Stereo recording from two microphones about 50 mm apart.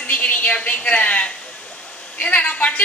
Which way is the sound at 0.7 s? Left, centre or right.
Left.